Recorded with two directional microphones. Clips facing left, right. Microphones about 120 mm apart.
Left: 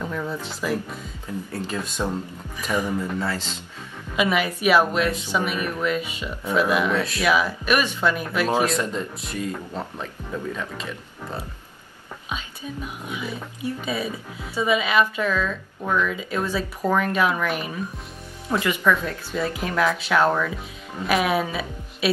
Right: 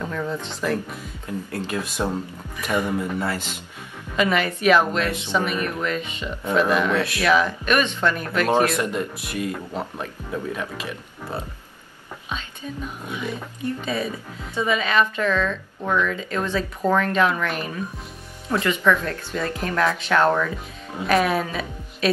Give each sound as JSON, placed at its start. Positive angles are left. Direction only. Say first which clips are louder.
{"t": 0.0, "sound": "speech", "louder": "right 1 dB", "side_deg": 5}
{"t": 1.7, "sound": "speech", "louder": "right 2 dB", "side_deg": -5}
{"t": 4.2, "sound": "speech", "louder": "right 1 dB", "side_deg": 10}
{"t": 8.7, "sound": "speech", "louder": "right 1 dB", "side_deg": -10}
{"t": 12.3, "sound": "speech", "louder": "even", "side_deg": 10}